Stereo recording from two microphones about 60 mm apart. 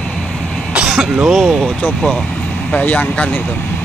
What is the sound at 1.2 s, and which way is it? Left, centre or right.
Speech, centre.